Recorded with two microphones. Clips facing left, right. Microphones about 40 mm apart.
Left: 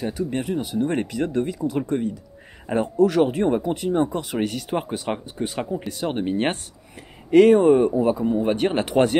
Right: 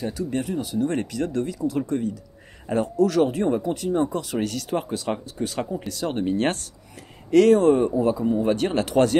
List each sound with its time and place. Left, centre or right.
0.0 s speech: centre